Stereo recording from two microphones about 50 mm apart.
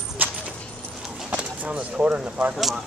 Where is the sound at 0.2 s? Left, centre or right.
Right.